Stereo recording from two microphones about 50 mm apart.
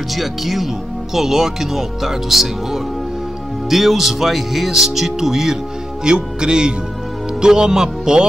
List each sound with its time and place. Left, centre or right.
0.1 s speech: centre